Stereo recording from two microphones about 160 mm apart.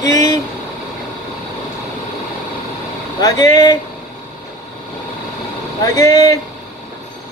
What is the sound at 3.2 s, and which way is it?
Speech, 25° left (ahead or behind).